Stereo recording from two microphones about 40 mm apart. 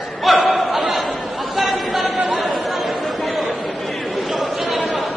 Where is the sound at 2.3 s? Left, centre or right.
Centre.